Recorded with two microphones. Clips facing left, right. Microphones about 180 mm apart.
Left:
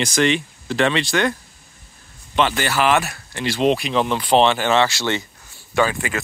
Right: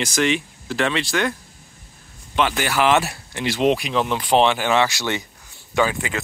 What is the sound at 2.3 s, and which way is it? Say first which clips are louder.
Speech: left 1 dB; 10° right (ahead or behind).